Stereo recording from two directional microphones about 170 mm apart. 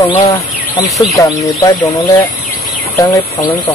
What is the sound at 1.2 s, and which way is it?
Speech, 20° left (ahead or behind).